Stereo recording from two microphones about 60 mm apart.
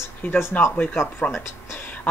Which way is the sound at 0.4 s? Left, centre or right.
Left.